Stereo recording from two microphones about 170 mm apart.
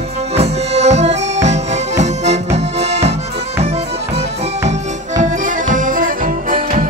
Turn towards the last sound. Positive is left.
turn(degrees=-55)  # may be behind; listen again after turning